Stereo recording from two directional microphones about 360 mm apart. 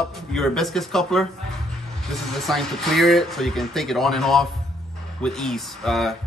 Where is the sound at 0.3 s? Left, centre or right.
Centre.